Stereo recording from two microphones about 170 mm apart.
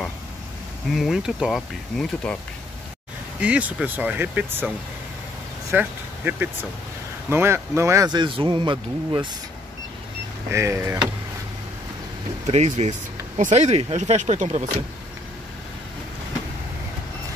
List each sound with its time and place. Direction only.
0.9 s speech: centre (ahead or behind)
3.3 s speech: 5° right (ahead or behind); by 9.3 s 30° right (ahead or behind)
10.5 s speech: 15° right (ahead or behind)
12.4 s speech: 40° right (ahead or behind)